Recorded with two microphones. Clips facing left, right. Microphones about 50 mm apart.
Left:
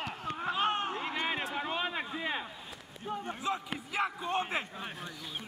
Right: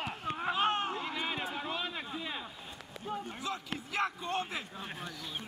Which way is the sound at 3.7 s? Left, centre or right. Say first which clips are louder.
Left 1 dB; centre.